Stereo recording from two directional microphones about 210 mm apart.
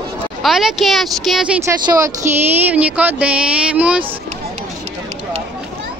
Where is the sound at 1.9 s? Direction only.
15° right (ahead or behind).